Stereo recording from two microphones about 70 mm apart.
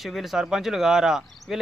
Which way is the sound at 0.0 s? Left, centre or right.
Centre.